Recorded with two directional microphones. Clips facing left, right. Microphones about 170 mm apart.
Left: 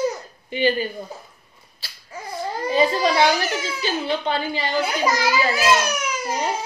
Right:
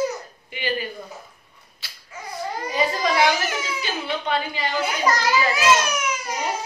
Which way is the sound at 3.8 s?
30° left (ahead or behind).